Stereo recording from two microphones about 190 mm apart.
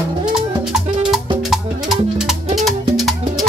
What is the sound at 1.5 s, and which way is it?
Music, centre (ahead or behind).